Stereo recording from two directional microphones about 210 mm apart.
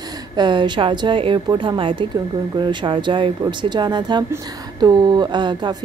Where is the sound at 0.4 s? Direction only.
20° right (ahead or behind).